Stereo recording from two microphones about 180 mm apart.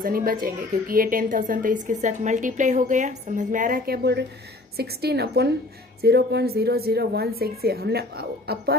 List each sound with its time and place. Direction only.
0.0 s a woman's voice: 55° right (ahead or behind)